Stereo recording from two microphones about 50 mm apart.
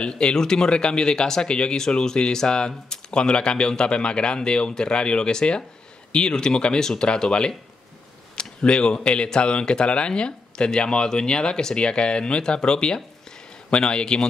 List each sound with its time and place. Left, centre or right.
0.0 s speech: centre